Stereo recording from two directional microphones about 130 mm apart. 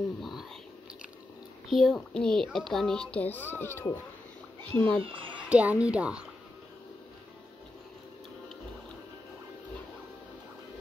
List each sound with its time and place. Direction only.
0.2 s whispering: centre (ahead or behind)
1.7 s a child's voice: centre (ahead or behind)
5.0 s a child's voice: 40° right (ahead or behind)
5.5 s speech: 10° right (ahead or behind)